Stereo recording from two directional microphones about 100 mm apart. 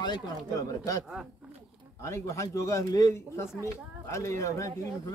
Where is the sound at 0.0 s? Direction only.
40° left (ahead or behind).